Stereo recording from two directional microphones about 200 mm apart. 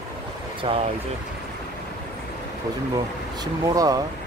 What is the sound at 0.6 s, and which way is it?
Speech, 25° right (ahead or behind).